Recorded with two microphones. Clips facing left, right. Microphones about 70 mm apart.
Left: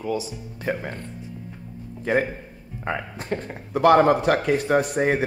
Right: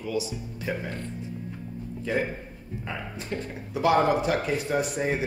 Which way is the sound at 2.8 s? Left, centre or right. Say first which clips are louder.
Left 7 dB; left.